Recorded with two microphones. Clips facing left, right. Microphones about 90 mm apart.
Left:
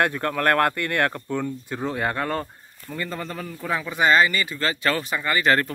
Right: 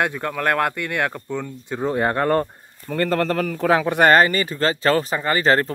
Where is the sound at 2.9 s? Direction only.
70° right (ahead or behind); by 3.8 s 90° right.